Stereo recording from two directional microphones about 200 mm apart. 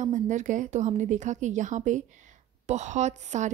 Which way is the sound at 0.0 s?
35° right (ahead or behind).